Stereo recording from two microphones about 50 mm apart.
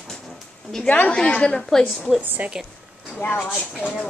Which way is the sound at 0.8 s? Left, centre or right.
Left.